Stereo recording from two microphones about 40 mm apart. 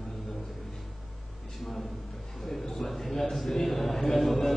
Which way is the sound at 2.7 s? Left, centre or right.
Centre.